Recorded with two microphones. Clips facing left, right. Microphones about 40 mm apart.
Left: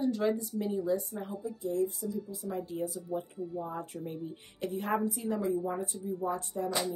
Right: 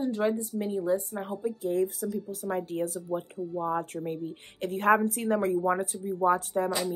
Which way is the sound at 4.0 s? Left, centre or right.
Right.